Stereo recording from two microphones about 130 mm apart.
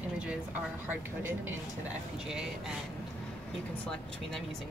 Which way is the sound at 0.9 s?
15° right (ahead or behind).